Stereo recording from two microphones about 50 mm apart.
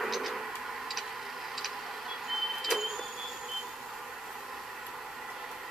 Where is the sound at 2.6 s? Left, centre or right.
Centre.